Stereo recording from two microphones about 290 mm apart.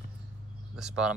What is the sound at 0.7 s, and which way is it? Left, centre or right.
Speech, centre.